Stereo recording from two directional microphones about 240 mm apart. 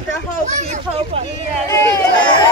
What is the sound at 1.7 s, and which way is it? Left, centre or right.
Speech, centre.